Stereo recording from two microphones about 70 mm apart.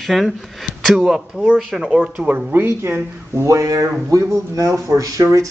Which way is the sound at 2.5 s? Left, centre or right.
Right.